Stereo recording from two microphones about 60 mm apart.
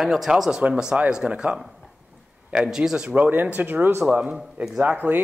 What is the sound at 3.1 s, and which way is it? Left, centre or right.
Speech, right.